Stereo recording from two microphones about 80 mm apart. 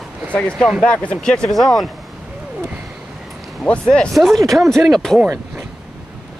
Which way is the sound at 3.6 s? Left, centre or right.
Centre.